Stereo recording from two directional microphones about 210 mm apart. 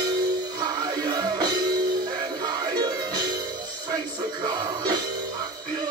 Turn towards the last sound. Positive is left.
turn(degrees=-20)  # may be behind; listen again after turning